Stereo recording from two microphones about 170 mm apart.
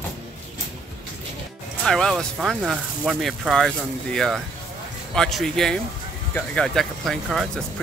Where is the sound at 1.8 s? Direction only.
5° left (ahead or behind).